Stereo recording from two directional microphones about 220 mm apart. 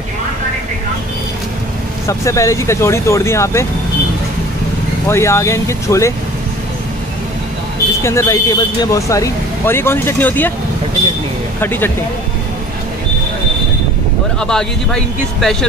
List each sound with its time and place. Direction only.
2.0 s speech: 15° left (ahead or behind)
5.0 s speech: 10° left (ahead or behind)
8.0 s speech: 10° left (ahead or behind)
11.6 s speech: 10° left (ahead or behind)
14.4 s speech: 5° left (ahead or behind)